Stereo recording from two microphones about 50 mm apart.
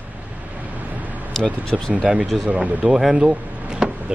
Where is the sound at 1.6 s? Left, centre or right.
Centre.